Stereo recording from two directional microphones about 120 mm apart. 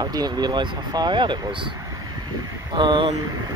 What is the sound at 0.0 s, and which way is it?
Speech, 35° right (ahead or behind).